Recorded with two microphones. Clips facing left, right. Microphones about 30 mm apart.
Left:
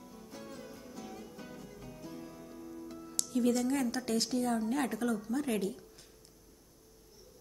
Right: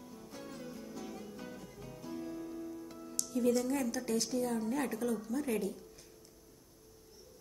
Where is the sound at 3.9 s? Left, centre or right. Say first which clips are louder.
Left 2 dB; left.